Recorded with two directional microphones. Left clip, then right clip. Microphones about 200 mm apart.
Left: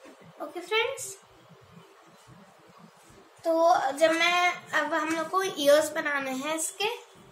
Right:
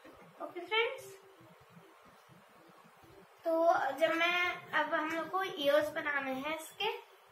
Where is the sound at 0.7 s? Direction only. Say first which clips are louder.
Left 5 dB; 50° left (ahead or behind).